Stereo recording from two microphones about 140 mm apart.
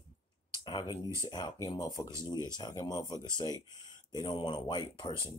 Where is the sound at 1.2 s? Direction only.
30° left (ahead or behind).